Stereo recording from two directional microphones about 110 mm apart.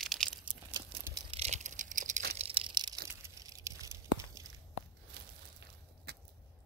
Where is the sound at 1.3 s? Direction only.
85° right; by 2.9 s 45° right (ahead or behind).